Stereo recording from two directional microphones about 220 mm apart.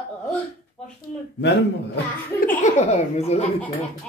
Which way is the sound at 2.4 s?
30° left (ahead or behind).